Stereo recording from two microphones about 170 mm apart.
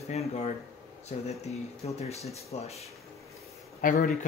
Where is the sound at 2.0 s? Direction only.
40° left (ahead or behind).